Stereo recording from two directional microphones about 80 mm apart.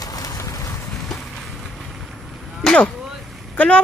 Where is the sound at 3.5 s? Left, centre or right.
Centre.